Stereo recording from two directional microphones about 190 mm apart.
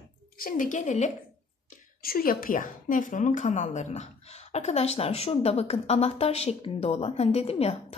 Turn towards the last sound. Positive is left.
turn(degrees=35)  # may be behind; listen again after turning